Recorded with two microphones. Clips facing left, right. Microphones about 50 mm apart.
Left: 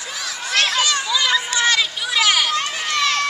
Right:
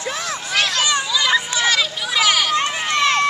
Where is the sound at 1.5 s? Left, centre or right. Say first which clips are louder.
Even; centre.